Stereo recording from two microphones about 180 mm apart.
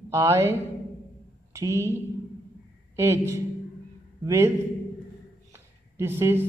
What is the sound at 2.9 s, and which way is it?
A man's voice, 15° right (ahead or behind).